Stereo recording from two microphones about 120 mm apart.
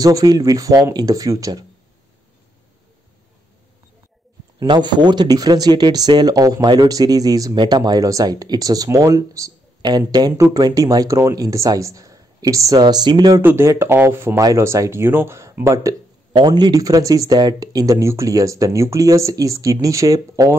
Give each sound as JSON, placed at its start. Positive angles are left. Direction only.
{"t": 0.0, "sound": "speech", "side_deg": -30}
{"t": 4.6, "sound": "speech", "side_deg": -40}
{"t": 13.4, "sound": "speech", "side_deg": -20}
{"t": 16.3, "sound": "speech", "side_deg": -35}